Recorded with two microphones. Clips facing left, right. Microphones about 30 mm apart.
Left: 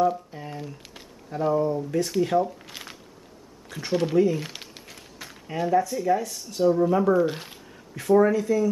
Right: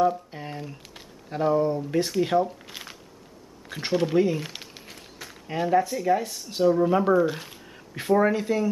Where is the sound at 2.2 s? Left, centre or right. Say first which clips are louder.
Left 1 dB; right.